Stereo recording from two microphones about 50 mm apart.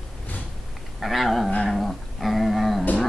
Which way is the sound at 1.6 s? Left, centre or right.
Centre.